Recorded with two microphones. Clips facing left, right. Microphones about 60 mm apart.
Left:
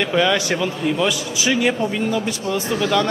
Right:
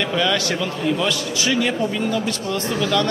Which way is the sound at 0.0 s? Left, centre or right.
Centre.